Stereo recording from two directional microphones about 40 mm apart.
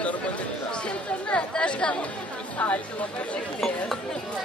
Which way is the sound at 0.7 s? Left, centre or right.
Left.